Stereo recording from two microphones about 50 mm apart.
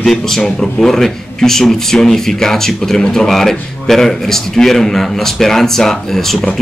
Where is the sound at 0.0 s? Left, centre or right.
Centre.